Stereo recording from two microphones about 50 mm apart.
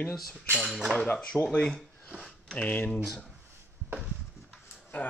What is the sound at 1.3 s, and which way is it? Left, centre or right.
Speech, left.